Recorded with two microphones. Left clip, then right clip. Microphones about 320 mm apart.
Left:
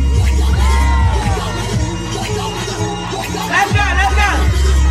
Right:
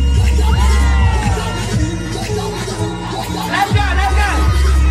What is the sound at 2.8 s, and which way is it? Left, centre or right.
Music, left.